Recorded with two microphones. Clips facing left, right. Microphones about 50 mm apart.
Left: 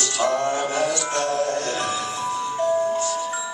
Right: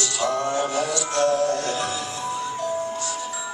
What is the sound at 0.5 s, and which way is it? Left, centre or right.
Music, left.